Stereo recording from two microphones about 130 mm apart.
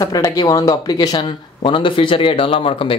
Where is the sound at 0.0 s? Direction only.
30° left (ahead or behind).